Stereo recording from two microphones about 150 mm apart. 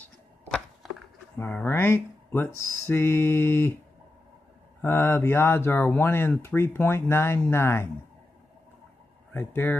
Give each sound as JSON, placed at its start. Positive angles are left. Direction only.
{"t": 1.4, "sound": "speech", "side_deg": 15}
{"t": 4.8, "sound": "speech", "side_deg": 15}
{"t": 9.3, "sound": "speech", "side_deg": 15}